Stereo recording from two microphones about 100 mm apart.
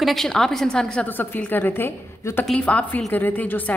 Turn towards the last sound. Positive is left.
turn(degrees=20)  # may be behind; listen again after turning